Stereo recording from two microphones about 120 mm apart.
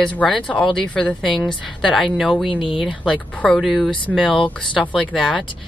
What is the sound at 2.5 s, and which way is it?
Speech, 45° left (ahead or behind).